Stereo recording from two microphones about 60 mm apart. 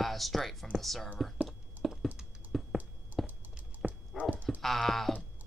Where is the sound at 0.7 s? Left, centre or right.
Centre.